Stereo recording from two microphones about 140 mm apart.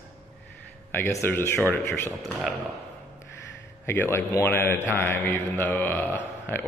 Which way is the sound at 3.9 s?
15° left (ahead or behind).